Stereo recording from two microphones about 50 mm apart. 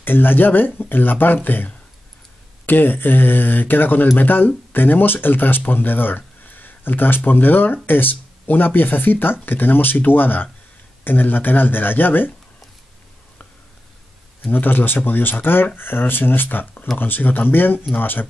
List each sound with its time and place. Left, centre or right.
0.0 s speech: left
14.4 s speech: left